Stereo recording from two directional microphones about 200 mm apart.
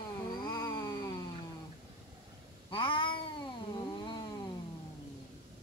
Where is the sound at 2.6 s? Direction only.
25° left (ahead or behind).